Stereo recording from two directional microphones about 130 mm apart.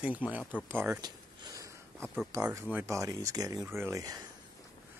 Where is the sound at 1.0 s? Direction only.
30° right (ahead or behind).